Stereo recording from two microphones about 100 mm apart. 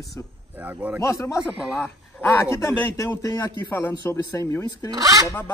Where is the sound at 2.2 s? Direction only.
20° left (ahead or behind).